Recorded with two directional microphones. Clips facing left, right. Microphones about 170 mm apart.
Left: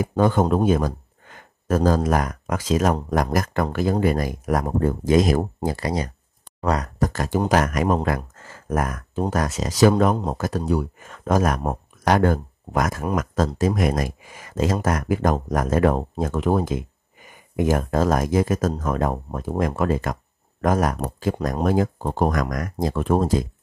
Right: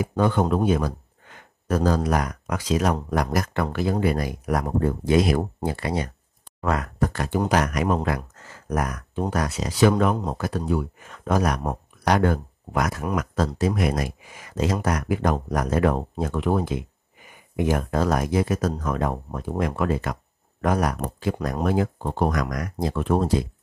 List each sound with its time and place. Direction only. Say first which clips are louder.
0.0 s speech: left 2 dB; 45° left (ahead or behind)